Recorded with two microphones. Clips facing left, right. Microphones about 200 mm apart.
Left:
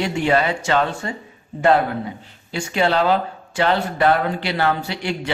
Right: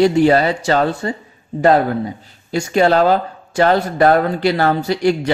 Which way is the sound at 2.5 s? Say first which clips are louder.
Right 6 dB; 40° right (ahead or behind).